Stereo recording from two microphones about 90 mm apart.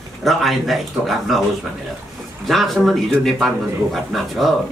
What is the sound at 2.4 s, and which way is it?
Speech, centre (ahead or behind).